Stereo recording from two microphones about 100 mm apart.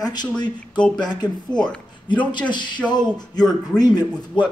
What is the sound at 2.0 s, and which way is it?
A man's voice, 50° left (ahead or behind).